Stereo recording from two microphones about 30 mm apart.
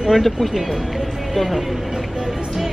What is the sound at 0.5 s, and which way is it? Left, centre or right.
Speech, centre.